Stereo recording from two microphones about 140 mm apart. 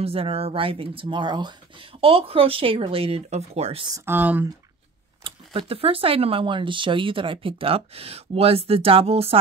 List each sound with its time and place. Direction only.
0.0 s speech: 45° right (ahead or behind)
3.9 s speech: 15° right (ahead or behind)
5.2 s speech: 40° right (ahead or behind)